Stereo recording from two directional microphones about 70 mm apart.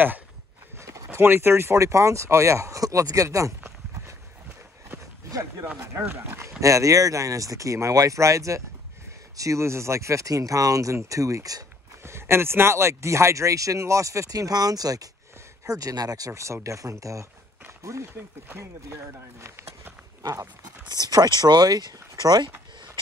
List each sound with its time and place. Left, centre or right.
0.7 s a sound: right
1.2 s speech: right
6.0 s speech: right
6.6 s speech: right
12.0 s speech: right
20.2 s speech: right